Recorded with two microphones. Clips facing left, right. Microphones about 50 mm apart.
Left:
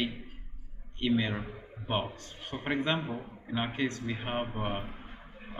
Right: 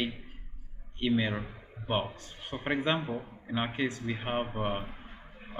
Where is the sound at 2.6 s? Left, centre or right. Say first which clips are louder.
Right 1 dB; centre.